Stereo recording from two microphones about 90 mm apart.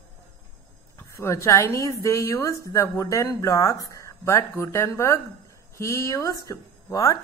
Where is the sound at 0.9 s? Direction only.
30° left (ahead or behind).